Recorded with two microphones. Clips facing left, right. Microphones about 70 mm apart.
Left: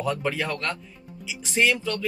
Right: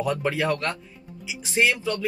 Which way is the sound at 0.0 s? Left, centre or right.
Right.